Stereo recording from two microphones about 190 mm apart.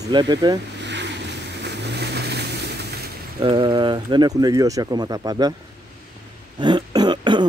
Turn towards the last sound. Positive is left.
turn(degrees=-25)  # may be behind; listen again after turning